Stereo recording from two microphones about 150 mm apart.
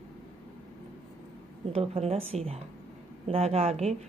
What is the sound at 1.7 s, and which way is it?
A woman's voice, 40° right (ahead or behind).